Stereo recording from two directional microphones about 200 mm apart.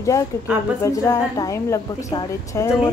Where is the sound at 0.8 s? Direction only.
15° left (ahead or behind).